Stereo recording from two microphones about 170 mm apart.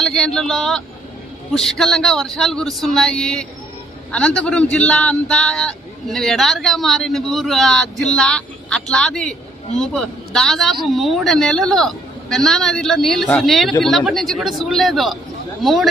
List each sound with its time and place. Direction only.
0.0 s a man's voice: centre (ahead or behind)